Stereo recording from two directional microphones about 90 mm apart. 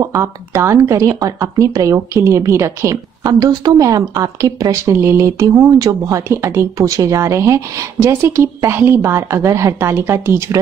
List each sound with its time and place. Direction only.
0.0 s speech: 30° right (ahead or behind)
3.3 s speech: 50° right (ahead or behind); by 5.7 s 30° right (ahead or behind)
5.7 s a woman's voice: 45° right (ahead or behind); by 10.4 s 25° right (ahead or behind)